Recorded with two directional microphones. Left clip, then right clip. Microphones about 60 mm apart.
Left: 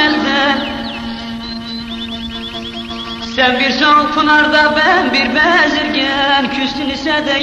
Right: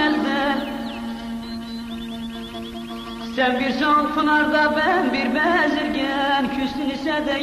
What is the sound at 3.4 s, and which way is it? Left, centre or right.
Music, right.